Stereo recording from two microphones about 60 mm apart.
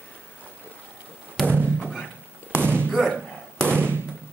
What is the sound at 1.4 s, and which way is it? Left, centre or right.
Music, centre.